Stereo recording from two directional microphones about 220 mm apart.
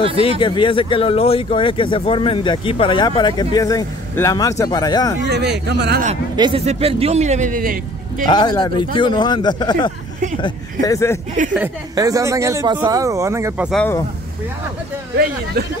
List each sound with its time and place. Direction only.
0.4 s speech: 20° left (ahead or behind)
5.2 s speech: 50° right (ahead or behind)
6.3 s speech: 20° right (ahead or behind); by 8.3 s 40° right (ahead or behind)
8.3 s speech: 20° left (ahead or behind)
11.9 s speech: 15° right (ahead or behind)
13.7 s speech: 5° left (ahead or behind)